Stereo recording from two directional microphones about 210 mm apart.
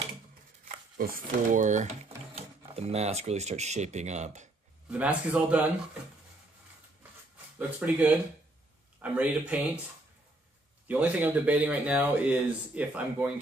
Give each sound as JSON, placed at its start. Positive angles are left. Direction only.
{"t": 0.7, "sound": "speech", "side_deg": -40}
{"t": 4.8, "sound": "speech", "side_deg": -5}
{"t": 7.5, "sound": "speech", "side_deg": -10}
{"t": 10.9, "sound": "speech", "side_deg": -10}